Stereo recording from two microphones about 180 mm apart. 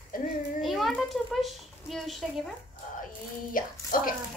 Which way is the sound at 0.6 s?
Centre (ahead or behind).